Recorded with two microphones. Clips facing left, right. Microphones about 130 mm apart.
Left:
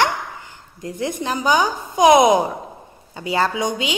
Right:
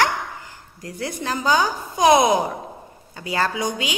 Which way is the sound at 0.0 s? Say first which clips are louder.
Left 1 dB; 20° left (ahead or behind).